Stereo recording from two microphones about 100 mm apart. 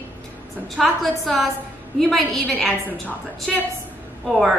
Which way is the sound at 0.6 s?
Centre (ahead or behind).